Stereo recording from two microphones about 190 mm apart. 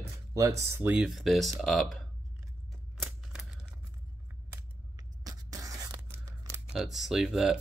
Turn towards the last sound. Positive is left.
turn(degrees=0)  # may be behind; listen again after turning